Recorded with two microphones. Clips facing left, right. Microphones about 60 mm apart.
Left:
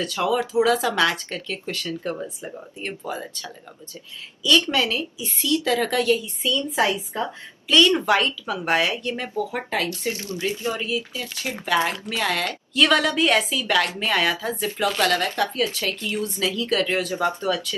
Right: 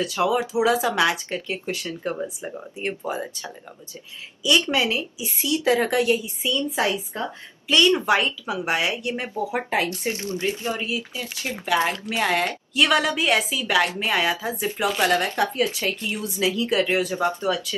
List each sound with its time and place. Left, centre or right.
0.0 s speech: centre
7.6 s a woman's voice: centre
11.6 s speech: centre
12.7 s speech: centre